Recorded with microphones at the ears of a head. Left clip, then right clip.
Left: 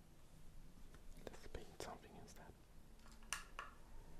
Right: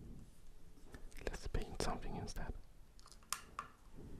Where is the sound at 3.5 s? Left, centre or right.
Right.